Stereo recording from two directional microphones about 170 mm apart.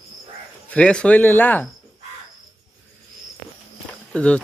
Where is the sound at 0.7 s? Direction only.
5° left (ahead or behind).